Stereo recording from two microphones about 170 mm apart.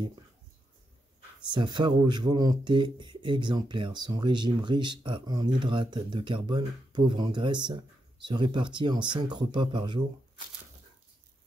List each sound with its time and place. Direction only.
1.5 s speech: 30° right (ahead or behind)